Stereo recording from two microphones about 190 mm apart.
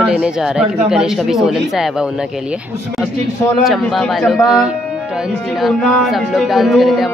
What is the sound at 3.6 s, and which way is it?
Speech, centre (ahead or behind).